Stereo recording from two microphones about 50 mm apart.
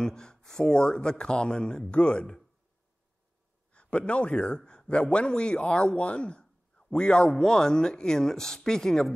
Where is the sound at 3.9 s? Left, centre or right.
Left.